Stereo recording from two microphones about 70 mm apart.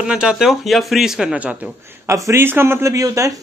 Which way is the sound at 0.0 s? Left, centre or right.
Centre.